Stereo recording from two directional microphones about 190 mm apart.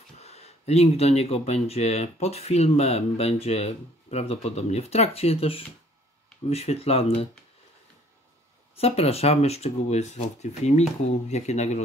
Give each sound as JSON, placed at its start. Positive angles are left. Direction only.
{"t": 0.2, "sound": "speech", "side_deg": 35}
{"t": 8.7, "sound": "speech", "side_deg": 30}